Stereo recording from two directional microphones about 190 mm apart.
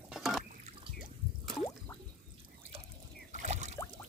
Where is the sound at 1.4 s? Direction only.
Centre (ahead or behind).